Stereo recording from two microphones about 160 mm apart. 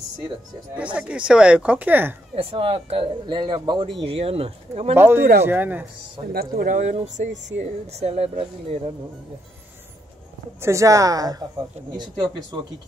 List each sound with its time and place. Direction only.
0.9 s speech: 5° right (ahead or behind)
2.3 s speech: 35° right (ahead or behind)
4.9 s speech: 15° right (ahead or behind)
6.3 s speech: 65° right (ahead or behind); by 8.9 s 40° right (ahead or behind)
10.6 s speech: 20° right (ahead or behind)